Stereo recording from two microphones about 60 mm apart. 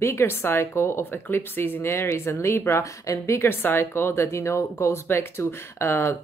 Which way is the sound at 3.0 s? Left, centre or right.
Left.